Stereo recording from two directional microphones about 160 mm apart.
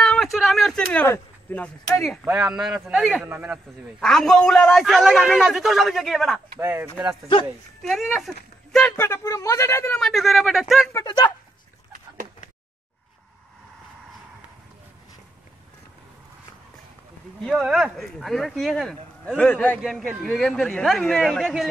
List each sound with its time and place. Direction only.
0.0 s a sound: 5° left (ahead or behind)
1.0 s a man's voice: 15° left (ahead or behind); by 3.5 s 10° right (ahead or behind)
4.0 s a man's voice: 5° left (ahead or behind)
6.6 s speech: 15° right (ahead or behind)
7.8 s a man's voice: centre (ahead or behind)
9.9 s a man's voice: centre (ahead or behind)
10.9 s speech: 20° left (ahead or behind)
17.4 s a man's voice: centre (ahead or behind)
19.8 s a man's voice: centre (ahead or behind)